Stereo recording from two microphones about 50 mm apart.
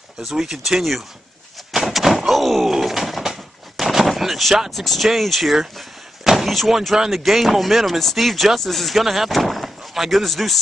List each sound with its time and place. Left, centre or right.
0.2 s speech: centre
1.7 s door: centre
7.0 s speech: centre